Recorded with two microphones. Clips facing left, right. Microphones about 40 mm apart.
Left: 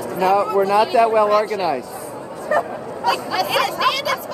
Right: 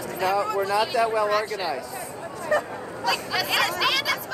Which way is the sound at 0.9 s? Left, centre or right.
Left.